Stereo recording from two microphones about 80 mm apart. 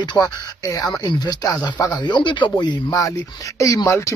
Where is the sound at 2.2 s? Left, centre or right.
Left.